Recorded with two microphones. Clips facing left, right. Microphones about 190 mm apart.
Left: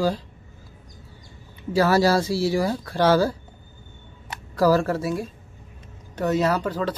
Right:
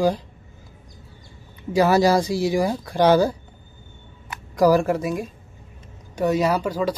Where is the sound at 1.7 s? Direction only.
15° right (ahead or behind).